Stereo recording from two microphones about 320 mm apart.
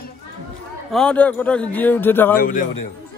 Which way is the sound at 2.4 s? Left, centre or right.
Left.